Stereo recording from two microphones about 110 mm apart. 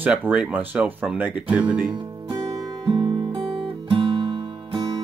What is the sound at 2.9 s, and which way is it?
Guitar, 55° right (ahead or behind).